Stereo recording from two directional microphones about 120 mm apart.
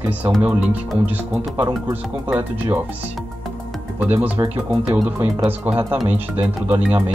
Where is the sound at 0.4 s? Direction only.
15° right (ahead or behind).